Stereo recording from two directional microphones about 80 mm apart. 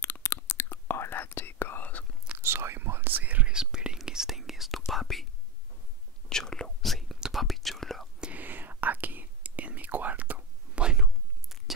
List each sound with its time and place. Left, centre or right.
0.0 s whispering: left
2.4 s whispering: right; by 5.2 s centre
6.2 s whispering: centre
8.2 s whispering: centre